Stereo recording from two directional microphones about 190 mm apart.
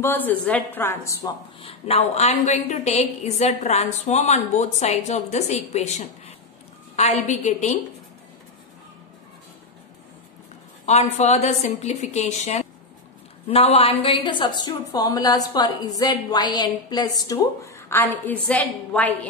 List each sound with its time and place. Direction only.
0.0 s a woman's voice: 10° left (ahead or behind)
1.6 s a woman's voice: 30° left (ahead or behind)
10.9 s a woman's voice: 35° left (ahead or behind); by 19.1 s 5° left (ahead or behind)